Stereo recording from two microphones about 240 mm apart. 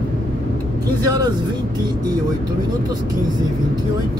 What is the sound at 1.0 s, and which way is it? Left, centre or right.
Speech, centre.